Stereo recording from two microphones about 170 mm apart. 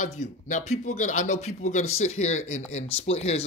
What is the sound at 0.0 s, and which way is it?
A man's voice, 45° left (ahead or behind).